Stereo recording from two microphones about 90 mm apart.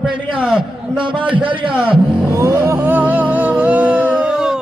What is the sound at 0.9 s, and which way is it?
Speech, 65° right (ahead or behind).